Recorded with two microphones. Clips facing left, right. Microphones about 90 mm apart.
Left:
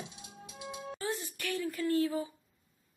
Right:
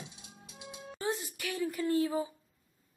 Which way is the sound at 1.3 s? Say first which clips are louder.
Right 1 dB; 10° right (ahead or behind).